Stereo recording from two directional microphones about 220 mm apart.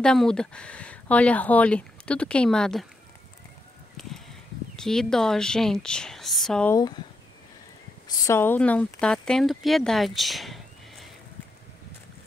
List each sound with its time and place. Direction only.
0.0 s speech: 5° left (ahead or behind)
4.7 s speech: centre (ahead or behind)
8.1 s speech: 15° left (ahead or behind)